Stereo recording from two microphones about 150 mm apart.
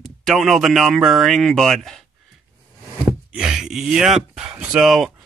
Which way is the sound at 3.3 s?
5° right (ahead or behind).